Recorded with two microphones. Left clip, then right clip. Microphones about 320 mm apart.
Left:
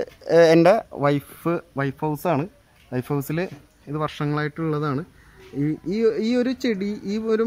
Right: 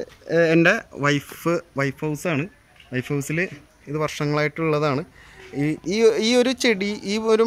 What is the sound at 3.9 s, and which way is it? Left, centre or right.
Speech, centre.